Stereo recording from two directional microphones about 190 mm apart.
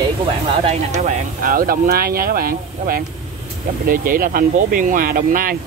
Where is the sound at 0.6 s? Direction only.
35° right (ahead or behind).